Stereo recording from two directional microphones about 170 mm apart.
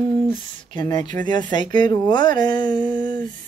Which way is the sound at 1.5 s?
25° left (ahead or behind).